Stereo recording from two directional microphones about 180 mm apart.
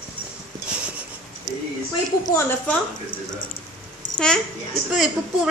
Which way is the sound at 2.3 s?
10° left (ahead or behind).